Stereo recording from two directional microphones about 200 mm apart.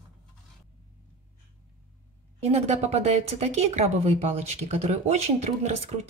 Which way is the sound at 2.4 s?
30° right (ahead or behind).